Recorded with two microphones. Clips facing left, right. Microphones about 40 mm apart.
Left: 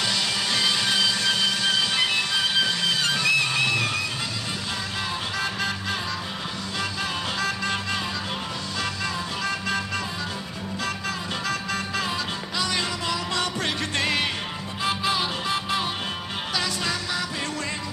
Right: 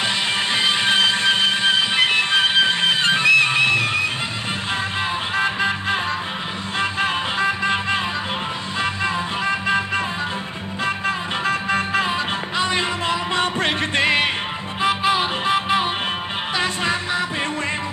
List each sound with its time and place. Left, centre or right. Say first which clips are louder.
0.0 s music: right 4 dB; right
5.3 s music: right 9 dB; right